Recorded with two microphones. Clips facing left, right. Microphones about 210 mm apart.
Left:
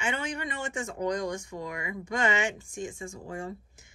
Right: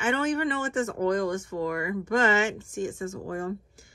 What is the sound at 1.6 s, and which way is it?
Speech, 50° right (ahead or behind).